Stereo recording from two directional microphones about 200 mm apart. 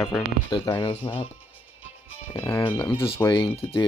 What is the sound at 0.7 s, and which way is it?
Speech, 15° left (ahead or behind).